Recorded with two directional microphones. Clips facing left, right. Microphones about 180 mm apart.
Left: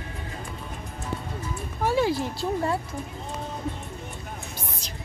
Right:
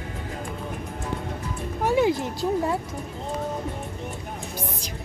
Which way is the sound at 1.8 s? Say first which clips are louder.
Right 2 dB; 15° right (ahead or behind).